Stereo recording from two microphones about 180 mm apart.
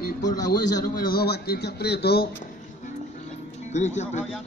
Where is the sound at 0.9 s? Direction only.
55° left (ahead or behind).